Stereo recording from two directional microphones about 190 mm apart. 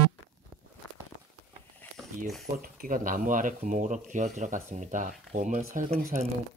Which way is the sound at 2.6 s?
45° right (ahead or behind).